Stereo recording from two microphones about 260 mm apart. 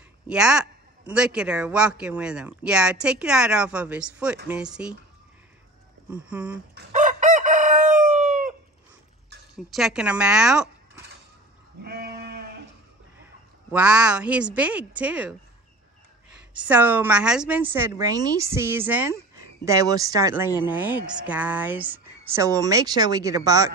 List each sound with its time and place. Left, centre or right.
0.3 s a man's voice: centre
6.2 s a man's voice: centre
6.9 s chicken: right
9.6 s a man's voice: centre
11.8 s sheep: right
13.2 s a woman's voice: centre
16.5 s a woman's voice: centre